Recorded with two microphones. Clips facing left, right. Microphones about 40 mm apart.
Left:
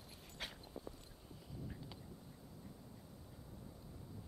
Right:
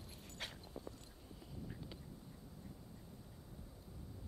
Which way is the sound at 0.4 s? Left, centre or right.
Centre.